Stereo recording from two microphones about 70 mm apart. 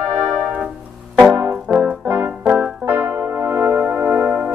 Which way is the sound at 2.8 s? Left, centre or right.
Right.